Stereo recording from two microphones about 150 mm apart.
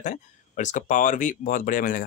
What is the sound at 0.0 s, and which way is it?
Speech, 55° left (ahead or behind).